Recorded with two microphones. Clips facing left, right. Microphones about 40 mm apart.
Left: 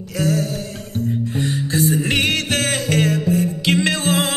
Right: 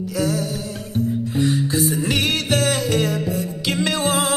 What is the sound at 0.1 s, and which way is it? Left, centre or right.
Music, left.